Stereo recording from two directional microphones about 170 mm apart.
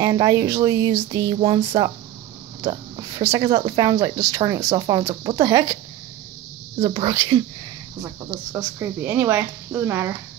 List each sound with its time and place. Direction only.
0.0 s speech: 20° right (ahead or behind)
2.7 s speech: 20° right (ahead or behind)
6.8 s speech: 20° right (ahead or behind)
8.5 s speech: 15° right (ahead or behind)